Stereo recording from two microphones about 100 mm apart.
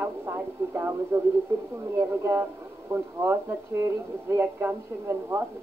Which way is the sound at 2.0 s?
25° right (ahead or behind).